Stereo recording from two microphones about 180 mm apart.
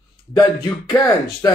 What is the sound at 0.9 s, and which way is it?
Speech, 20° left (ahead or behind).